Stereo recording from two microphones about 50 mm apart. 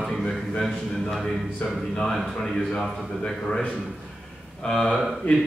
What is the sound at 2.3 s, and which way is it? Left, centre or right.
A man's voice, centre.